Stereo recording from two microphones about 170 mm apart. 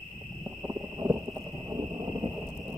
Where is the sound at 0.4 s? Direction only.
15° right (ahead or behind).